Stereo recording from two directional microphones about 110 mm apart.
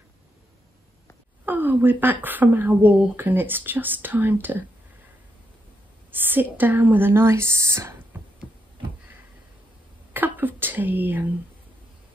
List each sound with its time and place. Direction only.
1.4 s speech: 15° right (ahead or behind)
6.1 s a woman's voice: 20° right (ahead or behind)
8.1 s a sound: 20° right (ahead or behind)
10.1 s whispering: 15° right (ahead or behind)